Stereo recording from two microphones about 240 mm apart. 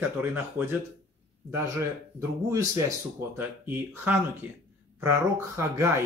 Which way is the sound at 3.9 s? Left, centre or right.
Centre.